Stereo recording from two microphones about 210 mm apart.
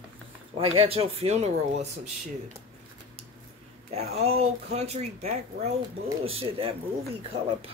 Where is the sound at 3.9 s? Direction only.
30° right (ahead or behind).